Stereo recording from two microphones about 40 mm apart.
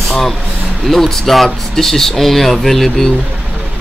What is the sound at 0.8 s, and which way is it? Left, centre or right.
Speech, centre.